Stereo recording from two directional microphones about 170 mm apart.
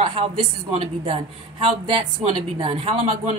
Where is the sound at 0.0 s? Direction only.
30° right (ahead or behind).